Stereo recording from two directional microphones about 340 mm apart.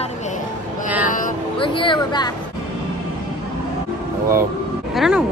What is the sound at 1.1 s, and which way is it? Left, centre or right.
Speech, centre.